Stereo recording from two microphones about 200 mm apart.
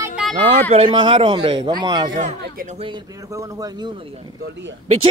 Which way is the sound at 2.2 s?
40° right (ahead or behind).